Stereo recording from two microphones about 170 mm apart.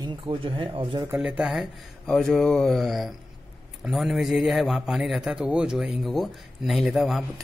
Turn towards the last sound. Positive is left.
turn(degrees=0)  # may be behind; listen again after turning